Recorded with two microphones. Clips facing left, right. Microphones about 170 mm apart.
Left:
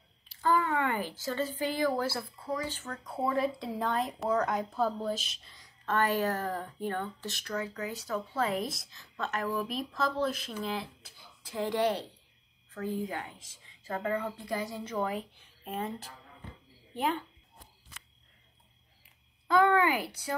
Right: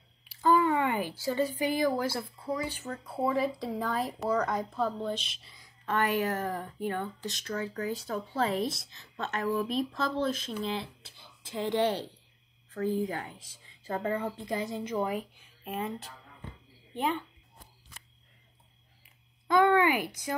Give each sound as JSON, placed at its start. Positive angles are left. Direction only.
{"t": 0.3, "sound": "a woman's voice", "side_deg": -15}
{"t": 5.9, "sound": "a woman's voice", "side_deg": -15}
{"t": 6.1, "sound": "speech", "side_deg": 40}
{"t": 7.2, "sound": "a woman's voice", "side_deg": -20}
{"t": 15.4, "sound": "a sound", "side_deg": 30}
{"t": 19.4, "sound": "a sound", "side_deg": -20}
{"t": 20.1, "sound": "speech", "side_deg": 35}